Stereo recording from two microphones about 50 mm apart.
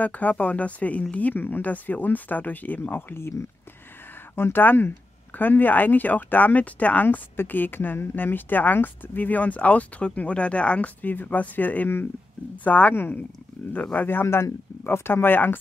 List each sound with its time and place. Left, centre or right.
0.0 s speech: left
3.2 s speech: left
4.4 s speech: left
14.2 s speech: left